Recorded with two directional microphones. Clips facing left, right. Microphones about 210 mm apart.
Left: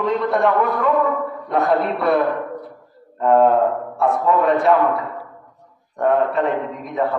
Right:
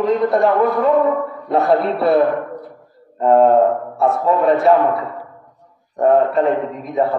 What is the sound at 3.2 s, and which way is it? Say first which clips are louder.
A man's voice: right 3 dB; 35° right (ahead or behind).